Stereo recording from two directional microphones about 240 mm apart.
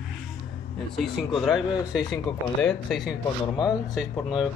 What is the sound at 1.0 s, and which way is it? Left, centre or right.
Speech, centre.